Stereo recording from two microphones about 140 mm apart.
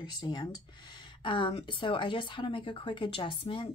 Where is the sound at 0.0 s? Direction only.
30° left (ahead or behind).